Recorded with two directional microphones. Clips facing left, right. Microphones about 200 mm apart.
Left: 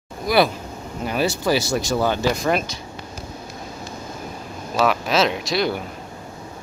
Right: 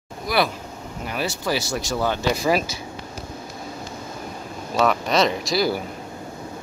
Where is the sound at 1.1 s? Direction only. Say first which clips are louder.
Left 5 dB; 30° left (ahead or behind).